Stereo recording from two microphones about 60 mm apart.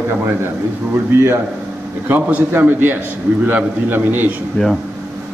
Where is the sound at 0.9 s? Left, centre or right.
Right.